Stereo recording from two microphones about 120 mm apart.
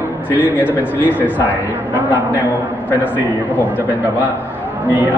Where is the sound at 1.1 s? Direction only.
15° left (ahead or behind).